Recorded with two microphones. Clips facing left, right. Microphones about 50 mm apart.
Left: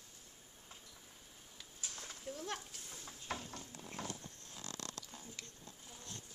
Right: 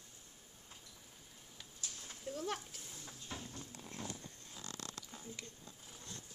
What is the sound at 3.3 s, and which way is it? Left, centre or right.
Stir, left.